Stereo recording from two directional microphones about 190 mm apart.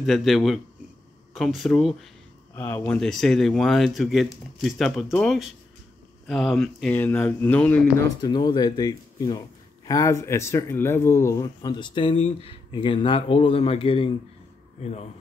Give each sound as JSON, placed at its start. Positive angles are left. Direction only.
{"t": 0.0, "sound": "speech", "side_deg": 0}
{"t": 2.5, "sound": "speech", "side_deg": 10}
{"t": 8.2, "sound": "speech", "side_deg": 25}